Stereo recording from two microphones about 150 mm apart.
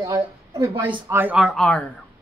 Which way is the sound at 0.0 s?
25° right (ahead or behind).